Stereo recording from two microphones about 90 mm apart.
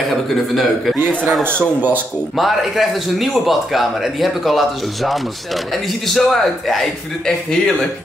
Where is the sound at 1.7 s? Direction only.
20° right (ahead or behind).